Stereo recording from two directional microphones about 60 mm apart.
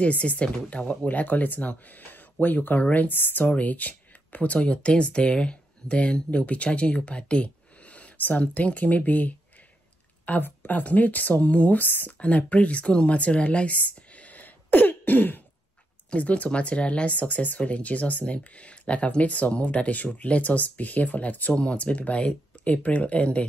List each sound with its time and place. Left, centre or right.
0.0 s speech: left